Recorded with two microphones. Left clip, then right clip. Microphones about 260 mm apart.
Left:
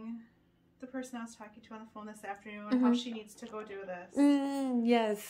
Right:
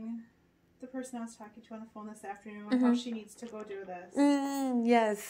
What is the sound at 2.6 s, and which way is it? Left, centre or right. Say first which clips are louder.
Speech: right 1 dB; centre.